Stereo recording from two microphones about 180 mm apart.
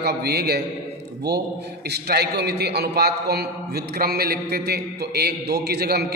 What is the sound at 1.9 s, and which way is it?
A man's voice, 65° right (ahead or behind).